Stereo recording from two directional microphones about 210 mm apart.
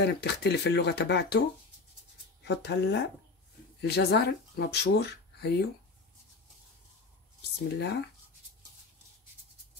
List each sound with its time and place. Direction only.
0.0 s speech: 55° left (ahead or behind)
2.4 s speech: 55° left (ahead or behind)
7.6 s speech: 55° left (ahead or behind)